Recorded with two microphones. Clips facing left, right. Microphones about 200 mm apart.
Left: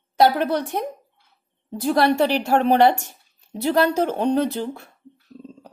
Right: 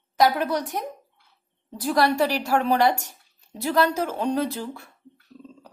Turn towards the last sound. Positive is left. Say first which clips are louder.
# left 4 dB
turn(degrees=25)  # may be behind; listen again after turning